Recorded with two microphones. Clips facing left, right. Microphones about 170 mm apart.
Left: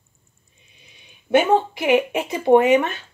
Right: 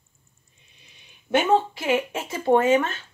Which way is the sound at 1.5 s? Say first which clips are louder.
Left 4 dB; 15° left (ahead or behind).